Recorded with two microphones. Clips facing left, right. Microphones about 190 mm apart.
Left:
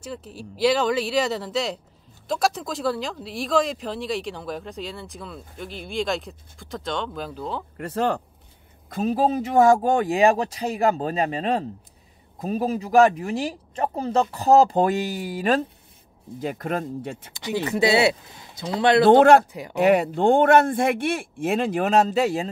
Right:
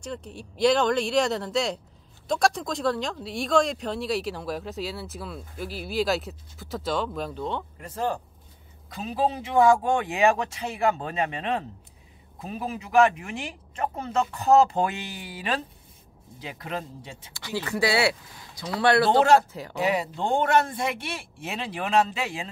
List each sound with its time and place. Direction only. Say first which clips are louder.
0.0 s speech: left 1 dB; 5° left (ahead or behind)
7.7 s speech: left 5 dB; 70° left (ahead or behind)
8.9 s speech: left 5 dB; 45° left (ahead or behind)
17.3 s speech: left 4 dB; 20° left (ahead or behind)
19.0 s speech: left 6 dB; 55° left (ahead or behind)